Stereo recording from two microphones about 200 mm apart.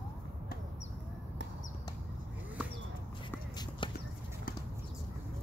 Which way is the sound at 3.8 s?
25° left (ahead or behind).